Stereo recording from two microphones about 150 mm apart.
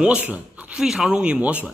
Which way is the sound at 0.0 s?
10° right (ahead or behind).